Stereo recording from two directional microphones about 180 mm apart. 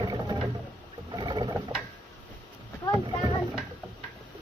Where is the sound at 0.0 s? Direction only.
25° right (ahead or behind).